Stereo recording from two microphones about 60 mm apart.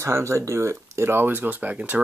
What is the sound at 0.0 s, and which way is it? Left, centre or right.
Speech, right.